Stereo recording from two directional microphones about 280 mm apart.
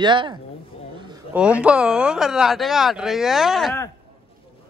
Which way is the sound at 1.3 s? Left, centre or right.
Centre.